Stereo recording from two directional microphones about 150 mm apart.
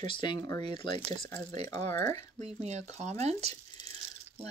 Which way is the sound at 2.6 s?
50° right (ahead or behind).